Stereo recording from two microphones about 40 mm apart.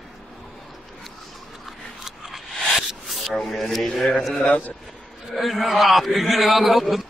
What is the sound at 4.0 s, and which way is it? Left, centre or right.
Speech, centre.